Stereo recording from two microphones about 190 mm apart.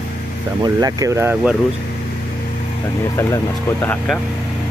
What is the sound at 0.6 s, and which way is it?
Speech, 20° right (ahead or behind).